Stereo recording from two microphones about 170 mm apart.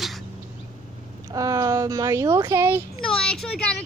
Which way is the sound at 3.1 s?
5° left (ahead or behind).